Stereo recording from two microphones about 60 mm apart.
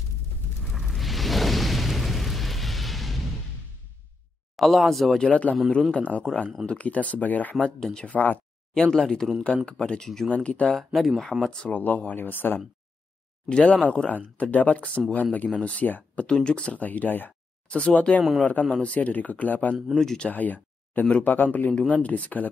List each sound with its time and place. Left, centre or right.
0.7 s music: centre
4.6 s speech: centre
5.3 s speech: left
8.9 s speech: centre
10.0 s speech: centre
10.3 s speech: left
10.8 s speech: centre
11.7 s speech: left
12.2 s speech: left
13.5 s speech: centre
17.6 s speech: centre
20.0 s speech: centre
20.2 s speech: left